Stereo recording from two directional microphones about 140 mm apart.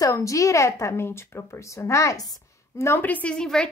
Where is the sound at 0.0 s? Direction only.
20° left (ahead or behind).